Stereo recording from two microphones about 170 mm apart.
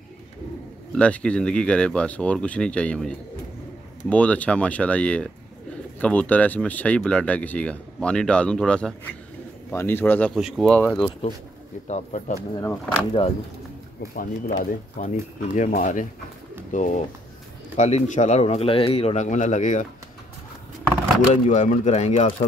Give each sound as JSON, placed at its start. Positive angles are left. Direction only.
{"t": 0.9, "sound": "speech", "side_deg": 5}
{"t": 10.3, "sound": "speech", "side_deg": 0}
{"t": 11.9, "sound": "speech", "side_deg": 40}
{"t": 12.5, "sound": "speech", "side_deg": 15}
{"t": 14.1, "sound": "speech", "side_deg": 55}
{"t": 21.3, "sound": "speech", "side_deg": 45}